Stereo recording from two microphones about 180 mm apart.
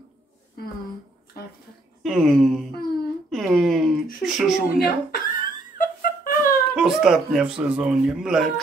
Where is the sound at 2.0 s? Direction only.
Centre (ahead or behind).